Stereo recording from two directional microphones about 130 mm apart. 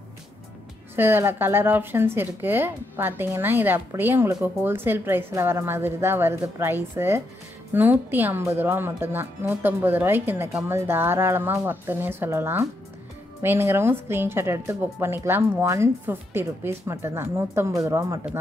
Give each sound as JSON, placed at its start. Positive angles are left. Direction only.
{"t": 0.9, "sound": "a woman's voice", "side_deg": -15}